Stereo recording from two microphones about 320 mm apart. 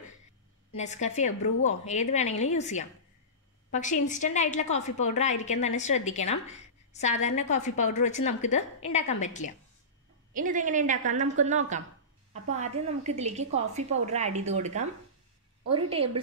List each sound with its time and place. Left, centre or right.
0.7 s a woman's voice: left
10.3 s a woman's voice: right